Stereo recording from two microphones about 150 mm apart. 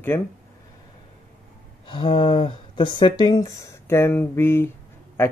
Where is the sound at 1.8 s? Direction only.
35° left (ahead or behind).